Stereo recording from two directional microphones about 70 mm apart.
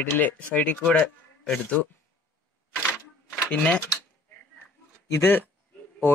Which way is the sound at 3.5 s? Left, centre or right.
Centre.